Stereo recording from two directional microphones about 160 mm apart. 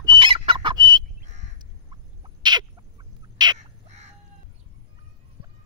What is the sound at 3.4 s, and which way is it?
Crow, 25° right (ahead or behind).